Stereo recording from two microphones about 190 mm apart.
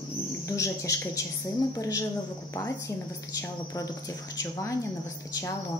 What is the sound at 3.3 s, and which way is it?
A woman's voice, 20° left (ahead or behind).